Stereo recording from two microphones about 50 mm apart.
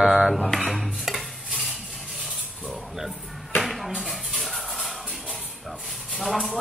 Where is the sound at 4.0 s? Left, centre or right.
Centre.